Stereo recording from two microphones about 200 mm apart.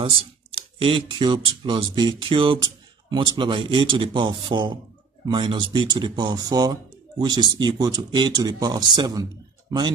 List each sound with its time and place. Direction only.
0.0 s speech: 25° right (ahead or behind)